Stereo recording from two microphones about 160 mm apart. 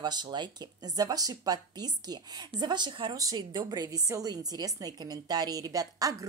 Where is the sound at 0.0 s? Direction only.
25° right (ahead or behind).